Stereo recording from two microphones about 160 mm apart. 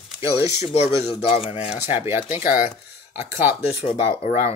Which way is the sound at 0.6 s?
40° left (ahead or behind).